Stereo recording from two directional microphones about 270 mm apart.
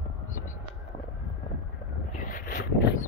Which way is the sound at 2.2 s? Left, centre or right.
Left.